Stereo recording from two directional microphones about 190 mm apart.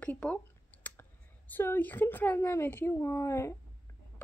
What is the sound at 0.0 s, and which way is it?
Speech, 5° left (ahead or behind).